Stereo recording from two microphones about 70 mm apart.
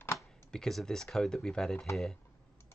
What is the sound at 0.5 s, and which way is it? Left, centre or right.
Speech, centre.